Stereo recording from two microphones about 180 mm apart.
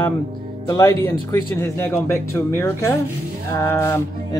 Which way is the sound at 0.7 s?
15° left (ahead or behind).